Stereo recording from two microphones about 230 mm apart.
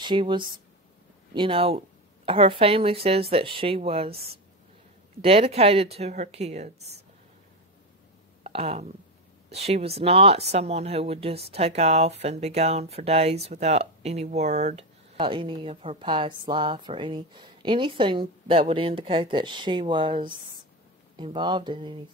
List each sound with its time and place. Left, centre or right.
0.0 s speech: centre
5.2 s speech: right
8.5 s speech: right